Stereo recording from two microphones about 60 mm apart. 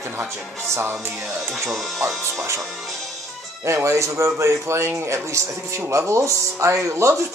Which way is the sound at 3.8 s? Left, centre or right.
Right.